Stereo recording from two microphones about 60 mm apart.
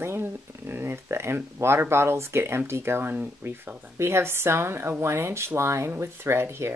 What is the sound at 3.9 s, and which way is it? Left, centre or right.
Speech, right.